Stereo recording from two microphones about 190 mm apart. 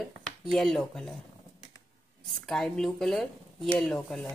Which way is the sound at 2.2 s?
Centre (ahead or behind).